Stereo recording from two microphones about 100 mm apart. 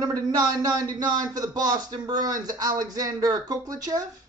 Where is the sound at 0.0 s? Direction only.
40° right (ahead or behind).